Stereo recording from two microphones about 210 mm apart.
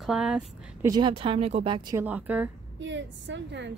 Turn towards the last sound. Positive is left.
turn(degrees=-55)  # may be behind; listen again after turning